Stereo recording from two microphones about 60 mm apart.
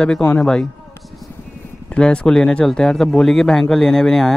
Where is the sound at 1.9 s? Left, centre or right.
Centre.